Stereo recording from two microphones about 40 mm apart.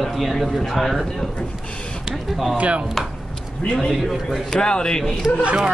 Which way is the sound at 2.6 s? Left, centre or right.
Right.